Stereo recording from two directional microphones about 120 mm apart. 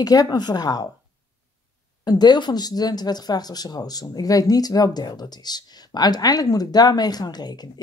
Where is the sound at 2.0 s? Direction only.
35° left (ahead or behind).